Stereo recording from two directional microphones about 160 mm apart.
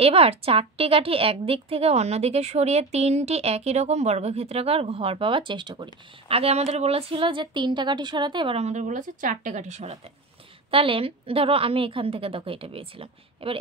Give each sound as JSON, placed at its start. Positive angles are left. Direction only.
{"t": 0.0, "sound": "a woman's voice", "side_deg": -35}